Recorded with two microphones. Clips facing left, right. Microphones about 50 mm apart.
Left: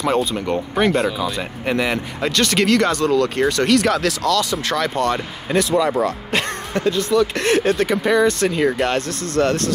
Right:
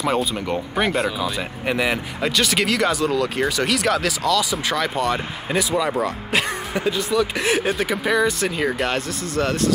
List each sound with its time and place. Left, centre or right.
0.0 s speech: centre